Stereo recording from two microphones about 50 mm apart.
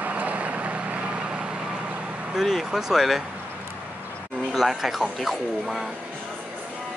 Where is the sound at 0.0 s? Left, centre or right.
Right.